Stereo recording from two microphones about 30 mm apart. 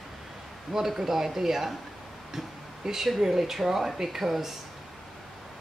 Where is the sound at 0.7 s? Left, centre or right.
Centre.